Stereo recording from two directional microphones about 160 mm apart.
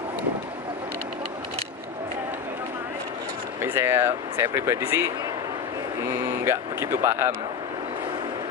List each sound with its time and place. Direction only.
3.6 s speech: 15° right (ahead or behind)